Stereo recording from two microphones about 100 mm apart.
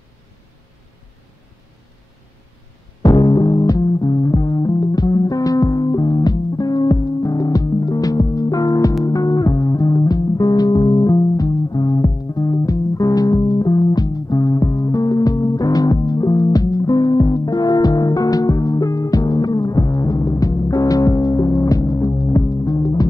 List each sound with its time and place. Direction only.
3.0 s music: 45° left (ahead or behind)